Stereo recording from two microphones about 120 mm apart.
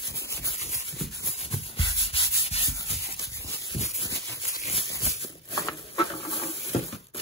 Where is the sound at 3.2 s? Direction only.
25° left (ahead or behind).